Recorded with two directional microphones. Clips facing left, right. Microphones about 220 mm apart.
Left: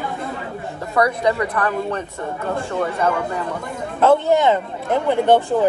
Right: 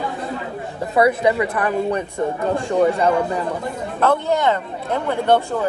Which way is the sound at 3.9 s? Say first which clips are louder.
Left 4 dB; 20° left (ahead or behind).